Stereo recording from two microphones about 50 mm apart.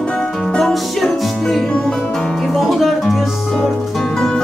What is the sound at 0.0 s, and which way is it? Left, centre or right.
Music, centre.